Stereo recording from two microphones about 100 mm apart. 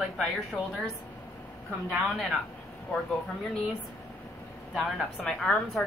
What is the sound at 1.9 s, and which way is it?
Speech, centre (ahead or behind).